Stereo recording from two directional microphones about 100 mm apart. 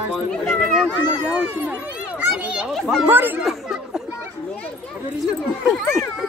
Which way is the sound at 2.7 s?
Centre (ahead or behind).